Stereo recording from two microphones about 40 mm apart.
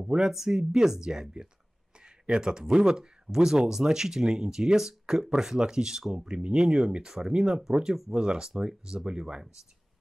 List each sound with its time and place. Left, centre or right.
0.0 s speech: centre